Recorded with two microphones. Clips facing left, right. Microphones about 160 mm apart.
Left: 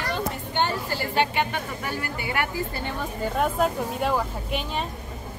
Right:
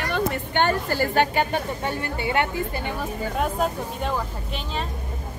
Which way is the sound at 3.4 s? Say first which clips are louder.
Left 2 dB; 5° left (ahead or behind).